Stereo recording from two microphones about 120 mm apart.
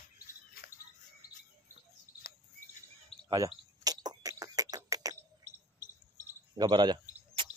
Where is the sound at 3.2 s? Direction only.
35° right (ahead or behind).